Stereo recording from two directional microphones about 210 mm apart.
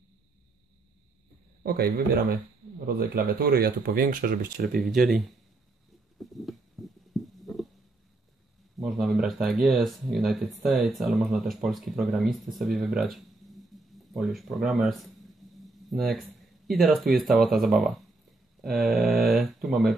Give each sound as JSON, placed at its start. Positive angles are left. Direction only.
{"t": 1.6, "sound": "speech", "side_deg": -45}
{"t": 4.7, "sound": "speech", "side_deg": 0}
{"t": 6.1, "sound": "a sound", "side_deg": 0}
{"t": 8.8, "sound": "speech", "side_deg": 0}